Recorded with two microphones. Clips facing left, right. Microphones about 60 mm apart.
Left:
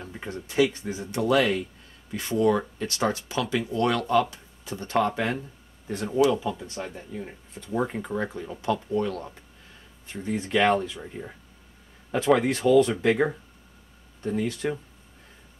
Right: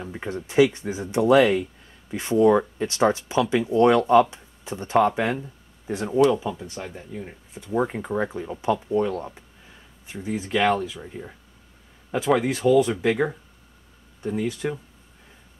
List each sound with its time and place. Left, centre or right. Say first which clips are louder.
0.0 s speech: right 5 dB; centre
10.0 s speech: right 1 dB; centre
13.1 s speech: even; centre
14.2 s speech: right 1 dB; centre